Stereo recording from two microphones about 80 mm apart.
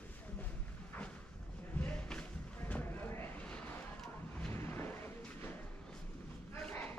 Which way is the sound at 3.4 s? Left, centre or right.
Centre.